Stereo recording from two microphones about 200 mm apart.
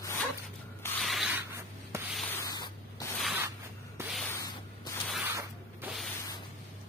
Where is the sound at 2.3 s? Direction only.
15° left (ahead or behind).